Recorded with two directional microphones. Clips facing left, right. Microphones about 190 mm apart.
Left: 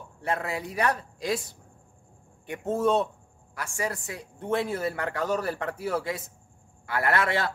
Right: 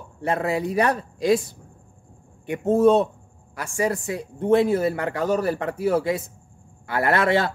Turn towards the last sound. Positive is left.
turn(degrees=-25)  # may be behind; listen again after turning